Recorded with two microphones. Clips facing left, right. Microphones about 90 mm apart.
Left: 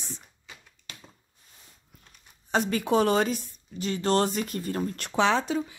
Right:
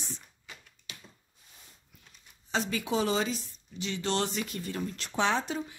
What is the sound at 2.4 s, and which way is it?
Speech, 50° left (ahead or behind).